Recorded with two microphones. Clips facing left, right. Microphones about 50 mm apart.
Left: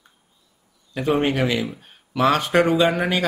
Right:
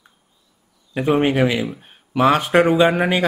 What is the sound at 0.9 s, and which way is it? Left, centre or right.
Speech, centre.